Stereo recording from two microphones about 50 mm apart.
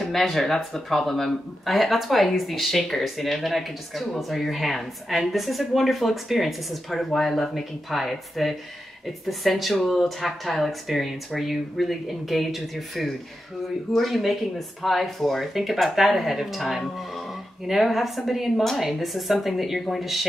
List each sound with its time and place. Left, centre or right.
0.1 s speech: centre